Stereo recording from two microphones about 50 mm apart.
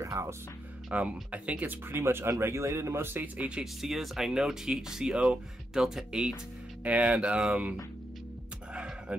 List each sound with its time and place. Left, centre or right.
0.0 s speech: right
0.9 s speech: right
1.7 s speech: right
3.3 s speech: right
3.8 s speech: centre
6.8 s speech: right